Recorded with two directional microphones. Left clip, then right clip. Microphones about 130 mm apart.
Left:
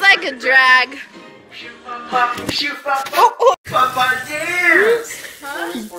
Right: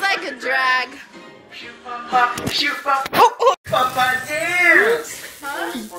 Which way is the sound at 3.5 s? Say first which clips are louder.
Left 3 dB; 25° left (ahead or behind).